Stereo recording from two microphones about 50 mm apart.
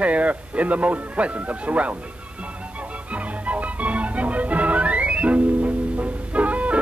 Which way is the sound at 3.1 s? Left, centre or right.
Right.